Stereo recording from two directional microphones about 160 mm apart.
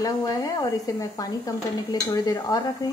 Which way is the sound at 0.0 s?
20° left (ahead or behind).